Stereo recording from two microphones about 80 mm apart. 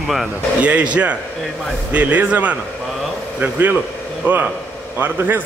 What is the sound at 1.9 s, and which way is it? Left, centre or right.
A man's voice, centre.